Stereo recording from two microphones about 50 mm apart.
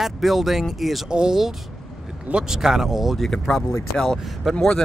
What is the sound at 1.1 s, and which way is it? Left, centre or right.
Speech, centre.